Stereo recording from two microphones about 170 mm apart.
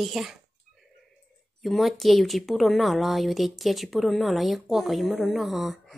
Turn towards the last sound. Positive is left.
turn(degrees=0)  # may be behind; listen again after turning